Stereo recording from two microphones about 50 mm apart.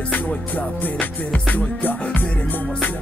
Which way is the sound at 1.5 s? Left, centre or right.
Left.